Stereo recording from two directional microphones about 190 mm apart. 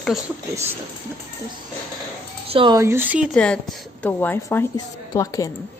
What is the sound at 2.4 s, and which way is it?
Speech, 30° right (ahead or behind).